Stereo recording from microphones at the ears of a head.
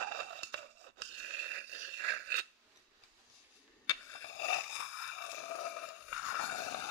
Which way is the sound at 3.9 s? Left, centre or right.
Left.